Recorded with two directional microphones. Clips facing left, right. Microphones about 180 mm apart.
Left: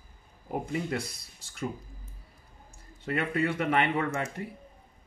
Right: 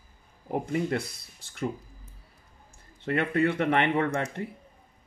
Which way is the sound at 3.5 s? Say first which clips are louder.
Right 2 dB; 35° right (ahead or behind).